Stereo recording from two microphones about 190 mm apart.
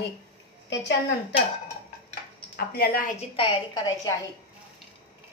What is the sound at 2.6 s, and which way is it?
Speech, 55° left (ahead or behind).